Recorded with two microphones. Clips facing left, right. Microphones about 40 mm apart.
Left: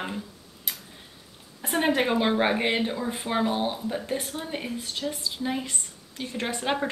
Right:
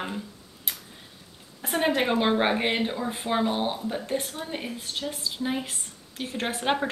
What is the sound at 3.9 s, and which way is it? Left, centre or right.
Speech, centre.